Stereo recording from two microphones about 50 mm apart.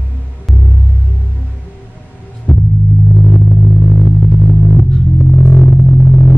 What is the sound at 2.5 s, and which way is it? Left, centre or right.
Rumble, left.